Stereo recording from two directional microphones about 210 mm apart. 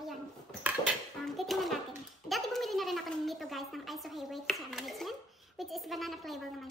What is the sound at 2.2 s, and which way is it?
A child's voice, centre (ahead or behind).